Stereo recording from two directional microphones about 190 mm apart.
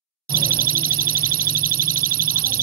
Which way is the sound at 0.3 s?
50° right (ahead or behind).